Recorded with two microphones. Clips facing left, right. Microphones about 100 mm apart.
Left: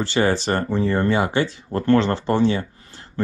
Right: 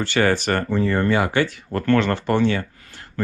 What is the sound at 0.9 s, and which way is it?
Speech, 20° left (ahead or behind).